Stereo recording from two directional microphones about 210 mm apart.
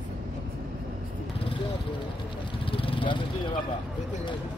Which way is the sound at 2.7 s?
25° left (ahead or behind).